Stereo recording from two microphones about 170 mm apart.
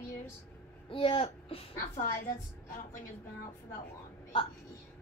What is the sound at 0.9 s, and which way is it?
Speech, 30° left (ahead or behind).